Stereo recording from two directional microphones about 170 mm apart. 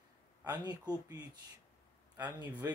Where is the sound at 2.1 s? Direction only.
10° right (ahead or behind).